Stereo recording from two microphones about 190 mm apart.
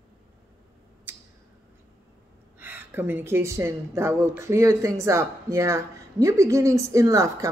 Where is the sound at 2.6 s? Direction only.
10° right (ahead or behind).